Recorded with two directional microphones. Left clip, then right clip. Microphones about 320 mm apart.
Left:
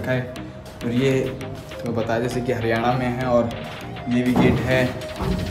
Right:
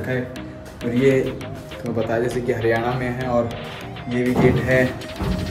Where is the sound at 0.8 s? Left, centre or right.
Centre.